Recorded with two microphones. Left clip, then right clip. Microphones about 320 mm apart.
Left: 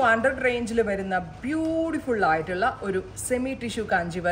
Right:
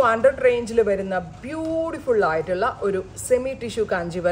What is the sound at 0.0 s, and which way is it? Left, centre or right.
A woman's voice, right.